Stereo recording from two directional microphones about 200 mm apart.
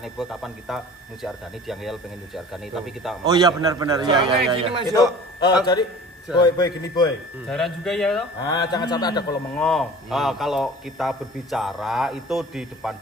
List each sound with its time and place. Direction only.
0.0 s a man's voice: centre (ahead or behind)
3.3 s a man's voice: 20° right (ahead or behind)
5.7 s a man's voice: 20° left (ahead or behind)
7.4 s a man's voice: 5° left (ahead or behind)
8.4 s a man's voice: 20° left (ahead or behind)
9.6 s a man's voice: centre (ahead or behind)